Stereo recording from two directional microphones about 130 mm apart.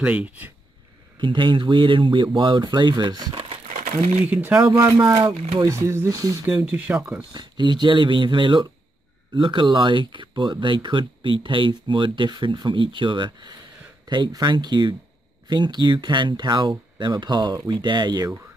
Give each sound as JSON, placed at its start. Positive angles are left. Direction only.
{"t": 0.0, "sound": "speech", "side_deg": -10}
{"t": 1.2, "sound": "speech", "side_deg": -40}
{"t": 3.4, "sound": "crumpling", "side_deg": -55}
{"t": 4.3, "sound": "speech", "side_deg": -15}
{"t": 5.0, "sound": "speech", "side_deg": -35}
{"t": 5.7, "sound": "speech", "side_deg": -20}
{"t": 6.4, "sound": "speech", "side_deg": -15}
{"t": 7.2, "sound": "speech", "side_deg": -35}